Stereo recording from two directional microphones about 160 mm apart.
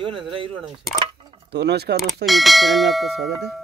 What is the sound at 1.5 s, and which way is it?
Speech, 90° right.